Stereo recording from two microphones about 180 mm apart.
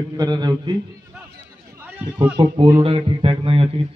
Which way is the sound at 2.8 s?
30° right (ahead or behind).